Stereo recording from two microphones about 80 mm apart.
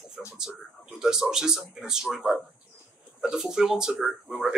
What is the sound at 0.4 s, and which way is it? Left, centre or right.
Speech, centre.